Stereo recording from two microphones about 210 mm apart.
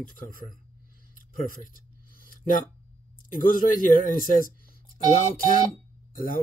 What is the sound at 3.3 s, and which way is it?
Speech, 40° left (ahead or behind).